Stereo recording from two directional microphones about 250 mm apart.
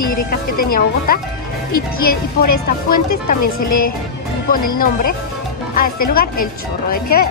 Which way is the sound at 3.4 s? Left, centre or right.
Left.